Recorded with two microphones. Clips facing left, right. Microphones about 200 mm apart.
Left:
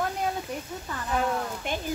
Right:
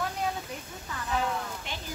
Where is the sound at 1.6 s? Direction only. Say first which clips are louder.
Left 9 dB; 50° left (ahead or behind).